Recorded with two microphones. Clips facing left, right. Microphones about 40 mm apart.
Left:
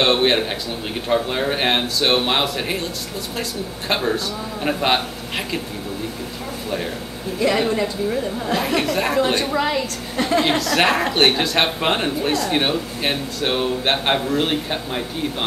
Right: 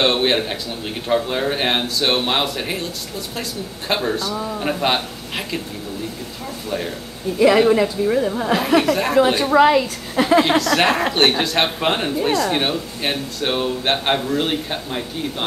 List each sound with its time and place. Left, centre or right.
0.0 s speech: centre
3.9 s speech: centre
7.3 s a woman's voice: centre
8.5 s speech: centre
9.5 s a woman's voice: centre